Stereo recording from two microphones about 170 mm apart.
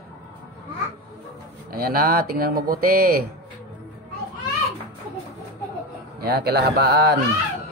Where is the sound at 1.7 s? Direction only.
60° right (ahead or behind).